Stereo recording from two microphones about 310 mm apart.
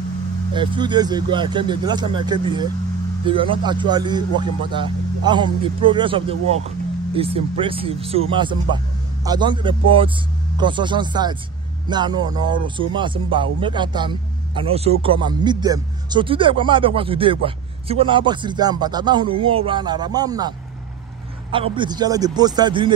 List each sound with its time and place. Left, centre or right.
0.6 s speech: centre